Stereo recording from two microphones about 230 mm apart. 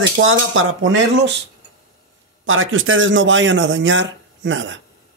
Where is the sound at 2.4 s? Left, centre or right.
Right.